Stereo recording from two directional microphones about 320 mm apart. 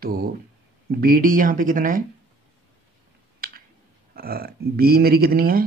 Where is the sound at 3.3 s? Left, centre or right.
Right.